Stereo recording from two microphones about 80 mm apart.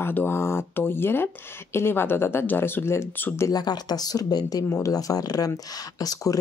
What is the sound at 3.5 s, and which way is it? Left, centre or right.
Speech, left.